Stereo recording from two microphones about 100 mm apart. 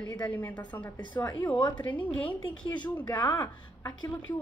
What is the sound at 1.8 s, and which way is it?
Speech, 15° left (ahead or behind).